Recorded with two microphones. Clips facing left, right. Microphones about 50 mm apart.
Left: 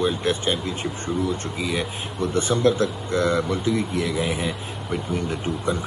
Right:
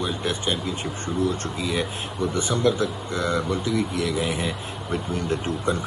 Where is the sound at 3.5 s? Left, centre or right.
Left.